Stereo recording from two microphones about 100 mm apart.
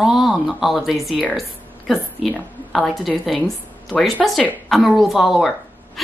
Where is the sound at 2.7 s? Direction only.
Centre (ahead or behind).